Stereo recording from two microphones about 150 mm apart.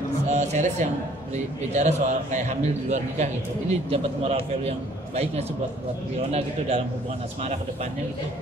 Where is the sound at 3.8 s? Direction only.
40° right (ahead or behind).